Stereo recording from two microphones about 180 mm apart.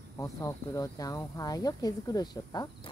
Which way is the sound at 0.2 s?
15° left (ahead or behind).